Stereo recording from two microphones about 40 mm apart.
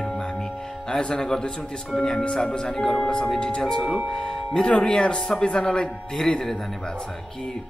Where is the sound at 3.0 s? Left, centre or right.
Left.